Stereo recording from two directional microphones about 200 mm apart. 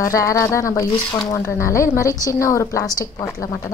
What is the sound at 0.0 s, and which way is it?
A woman's voice, 15° left (ahead or behind).